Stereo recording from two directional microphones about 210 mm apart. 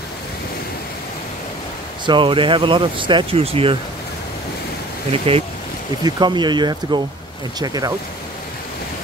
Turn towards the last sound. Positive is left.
turn(degrees=-20)  # may be behind; listen again after turning